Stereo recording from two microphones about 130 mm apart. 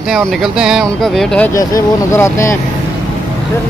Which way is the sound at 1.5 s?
25° left (ahead or behind).